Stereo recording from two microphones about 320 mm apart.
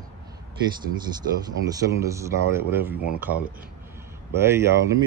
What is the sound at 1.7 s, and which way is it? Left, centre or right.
Speech, centre.